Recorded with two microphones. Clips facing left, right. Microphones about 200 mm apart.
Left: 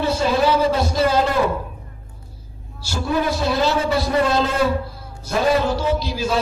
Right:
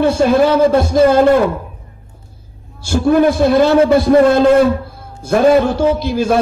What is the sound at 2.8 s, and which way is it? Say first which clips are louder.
A man's voice: right 10 dB; 50° right (ahead or behind).